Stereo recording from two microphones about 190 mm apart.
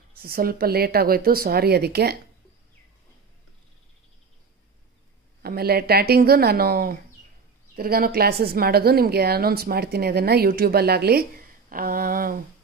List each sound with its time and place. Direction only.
0.1 s a woman's voice: 50° right (ahead or behind)
5.4 s a woman's voice: 55° right (ahead or behind)